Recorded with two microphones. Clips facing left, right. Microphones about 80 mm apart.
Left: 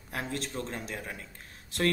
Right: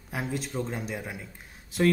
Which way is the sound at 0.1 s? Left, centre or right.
Centre.